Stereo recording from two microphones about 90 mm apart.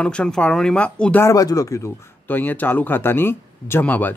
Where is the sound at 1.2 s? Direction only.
40° left (ahead or behind).